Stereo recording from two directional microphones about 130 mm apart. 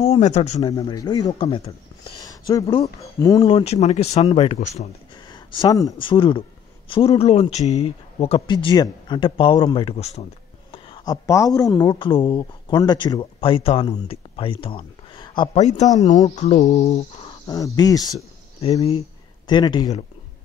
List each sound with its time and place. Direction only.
0.0 s speech: 55° left (ahead or behind)
0.6 s speech: 35° left (ahead or behind)
2.2 s a sound: 30° left (ahead or behind)
3.0 s speech: 25° left (ahead or behind)
3.4 s speech: 50° left (ahead or behind)
4.6 s cricket: 65° left (ahead or behind)
5.3 s speech: 35° left (ahead or behind)
6.0 s speech: 40° left (ahead or behind)
9.8 s speech: 50° left (ahead or behind)
11.1 s speech: 25° left (ahead or behind)
15.5 s cricket: 60° left (ahead or behind)
17.7 s speech: 30° left (ahead or behind)
18.6 s speech: 45° left (ahead or behind)
19.4 s speech: 35° left (ahead or behind)